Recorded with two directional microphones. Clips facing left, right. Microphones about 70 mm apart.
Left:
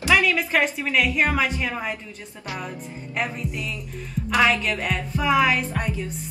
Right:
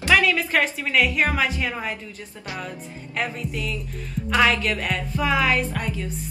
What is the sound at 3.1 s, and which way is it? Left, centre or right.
Speech, centre.